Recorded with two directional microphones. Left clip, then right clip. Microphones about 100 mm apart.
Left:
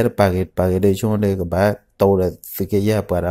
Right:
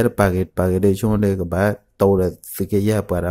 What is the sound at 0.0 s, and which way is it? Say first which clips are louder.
Speech: left 1 dB; 35° right (ahead or behind).